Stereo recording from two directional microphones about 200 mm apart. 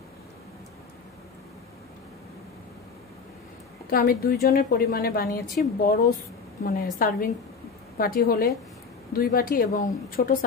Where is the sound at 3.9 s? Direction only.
45° left (ahead or behind).